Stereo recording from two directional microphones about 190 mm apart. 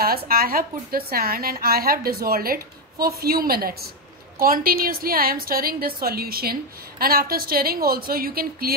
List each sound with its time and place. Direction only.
0.0 s a woman's voice: 55° right (ahead or behind)